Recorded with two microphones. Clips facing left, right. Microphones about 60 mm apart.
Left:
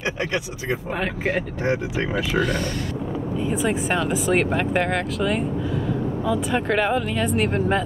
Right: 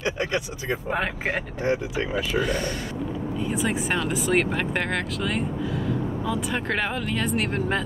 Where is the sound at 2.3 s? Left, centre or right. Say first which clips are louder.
Left 2 dB; centre.